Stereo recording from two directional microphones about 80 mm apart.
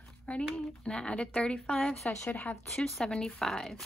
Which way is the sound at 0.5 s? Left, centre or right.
Centre.